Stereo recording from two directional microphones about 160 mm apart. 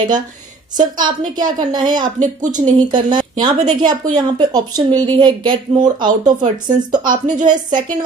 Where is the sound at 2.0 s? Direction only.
55° right (ahead or behind).